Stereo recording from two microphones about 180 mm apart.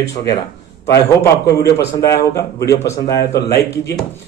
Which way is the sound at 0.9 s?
20° left (ahead or behind).